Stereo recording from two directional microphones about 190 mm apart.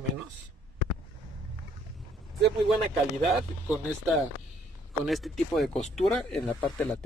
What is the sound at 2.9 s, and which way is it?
Speech, centre (ahead or behind).